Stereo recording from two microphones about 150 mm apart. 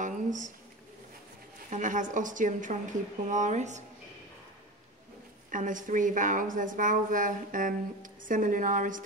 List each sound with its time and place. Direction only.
0.0 s a sound: 55° right (ahead or behind)
1.7 s a woman's voice: 60° right (ahead or behind)
5.5 s a woman's voice: 60° right (ahead or behind)